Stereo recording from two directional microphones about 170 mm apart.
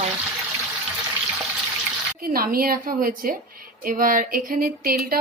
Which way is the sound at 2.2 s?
60° right (ahead or behind).